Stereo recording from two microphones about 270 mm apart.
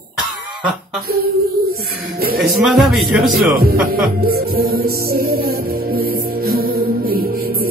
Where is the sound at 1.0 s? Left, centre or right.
Right.